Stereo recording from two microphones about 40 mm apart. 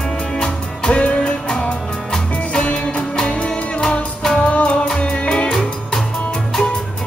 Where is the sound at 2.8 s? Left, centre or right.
Centre.